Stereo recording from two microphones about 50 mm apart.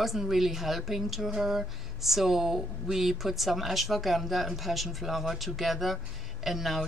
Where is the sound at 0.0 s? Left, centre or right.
Centre.